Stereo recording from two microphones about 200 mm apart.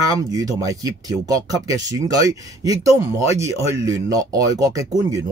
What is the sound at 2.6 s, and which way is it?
Speech, 15° right (ahead or behind).